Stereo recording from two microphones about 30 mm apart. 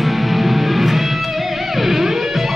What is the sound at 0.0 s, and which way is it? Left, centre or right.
Music, centre.